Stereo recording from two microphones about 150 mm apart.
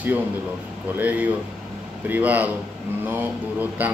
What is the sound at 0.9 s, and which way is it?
A man's voice, 10° right (ahead or behind).